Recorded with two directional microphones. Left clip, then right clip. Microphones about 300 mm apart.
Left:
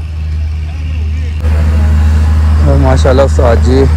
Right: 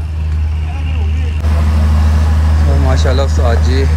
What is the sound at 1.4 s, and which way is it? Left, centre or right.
Vehicle, right.